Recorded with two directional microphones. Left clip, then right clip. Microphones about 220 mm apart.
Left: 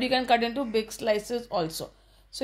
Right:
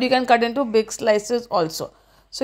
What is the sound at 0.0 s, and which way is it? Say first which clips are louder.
Speech: right 7 dB; 30° right (ahead or behind).